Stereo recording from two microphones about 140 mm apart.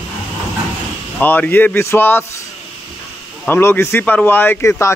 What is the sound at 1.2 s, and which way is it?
Speech, 15° left (ahead or behind).